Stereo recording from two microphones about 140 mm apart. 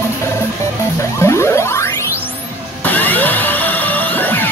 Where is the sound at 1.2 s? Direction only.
20° left (ahead or behind).